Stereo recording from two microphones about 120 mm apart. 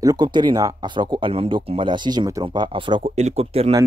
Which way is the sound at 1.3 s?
55° right (ahead or behind).